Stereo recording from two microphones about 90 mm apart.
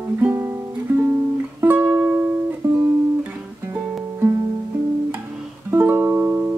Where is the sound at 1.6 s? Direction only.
20° right (ahead or behind).